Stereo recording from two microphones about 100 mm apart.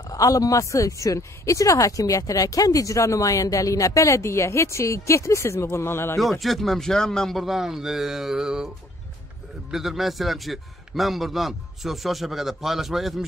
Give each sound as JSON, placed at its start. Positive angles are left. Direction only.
{"t": 0.1, "sound": "speech", "side_deg": 35}
{"t": 6.4, "sound": "a man's voice", "side_deg": 0}